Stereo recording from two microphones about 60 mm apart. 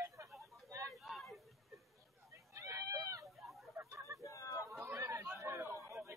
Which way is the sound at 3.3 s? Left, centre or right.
Centre.